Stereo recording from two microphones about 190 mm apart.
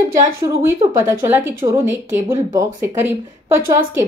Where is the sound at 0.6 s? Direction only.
15° right (ahead or behind).